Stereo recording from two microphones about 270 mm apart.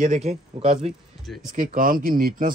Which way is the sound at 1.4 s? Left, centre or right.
Right.